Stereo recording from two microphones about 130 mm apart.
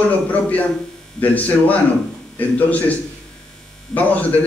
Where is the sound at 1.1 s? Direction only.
10° left (ahead or behind).